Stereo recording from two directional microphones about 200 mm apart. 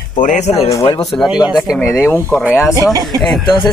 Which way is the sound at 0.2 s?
35° left (ahead or behind).